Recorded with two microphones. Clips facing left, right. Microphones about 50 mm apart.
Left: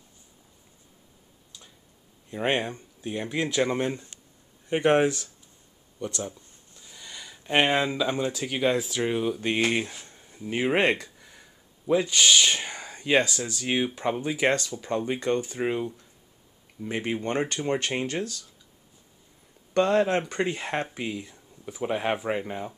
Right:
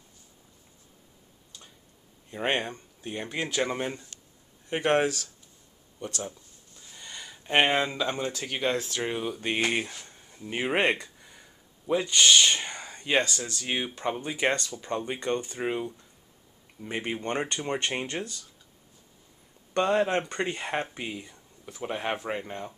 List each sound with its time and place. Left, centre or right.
2.3 s speech: centre
4.1 s a sound: centre
4.6 s speech: centre
10.0 s a sound: centre
11.8 s speech: centre
19.7 s speech: centre